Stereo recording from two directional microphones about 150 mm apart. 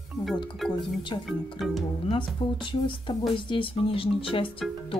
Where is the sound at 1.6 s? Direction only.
Centre (ahead or behind).